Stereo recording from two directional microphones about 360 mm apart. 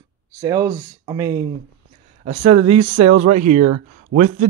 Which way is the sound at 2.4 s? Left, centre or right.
Right.